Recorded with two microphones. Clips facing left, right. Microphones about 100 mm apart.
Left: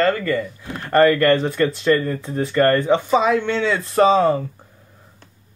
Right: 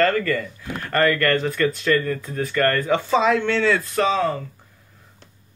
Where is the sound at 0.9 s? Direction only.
30° left (ahead or behind).